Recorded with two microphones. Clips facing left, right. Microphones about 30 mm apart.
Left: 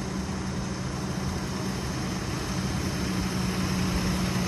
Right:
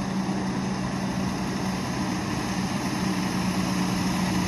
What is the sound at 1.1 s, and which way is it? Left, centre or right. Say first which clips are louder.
Vehicle: right 4 dB; centre.